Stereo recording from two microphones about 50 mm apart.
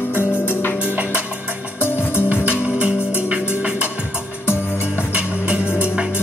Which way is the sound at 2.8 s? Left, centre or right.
Right.